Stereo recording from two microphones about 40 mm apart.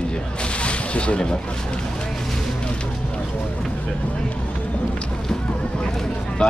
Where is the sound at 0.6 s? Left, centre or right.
Left.